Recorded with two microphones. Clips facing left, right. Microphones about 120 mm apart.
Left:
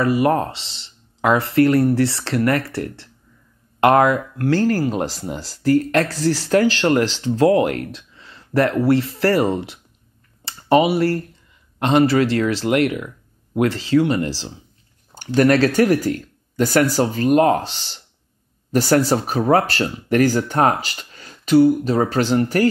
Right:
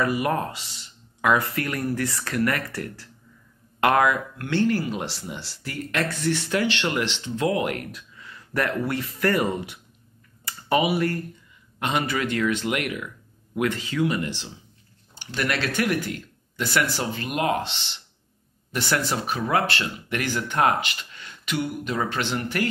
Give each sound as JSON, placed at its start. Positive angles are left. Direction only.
{"t": 0.0, "sound": "speech", "side_deg": 30}